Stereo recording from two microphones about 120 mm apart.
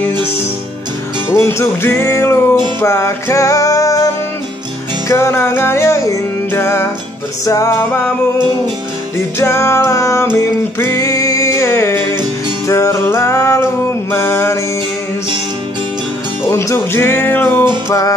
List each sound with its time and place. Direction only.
1.3 s music: 20° left (ahead or behind)
9.4 s music: 20° left (ahead or behind)
16.4 s music: 20° left (ahead or behind)
17.8 s music: 30° left (ahead or behind)